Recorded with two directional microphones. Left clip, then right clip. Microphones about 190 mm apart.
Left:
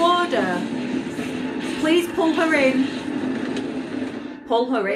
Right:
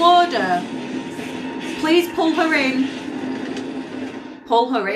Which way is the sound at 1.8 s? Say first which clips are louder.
Right 2 dB; 10° left (ahead or behind).